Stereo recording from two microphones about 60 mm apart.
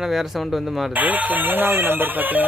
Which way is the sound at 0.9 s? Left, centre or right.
Right.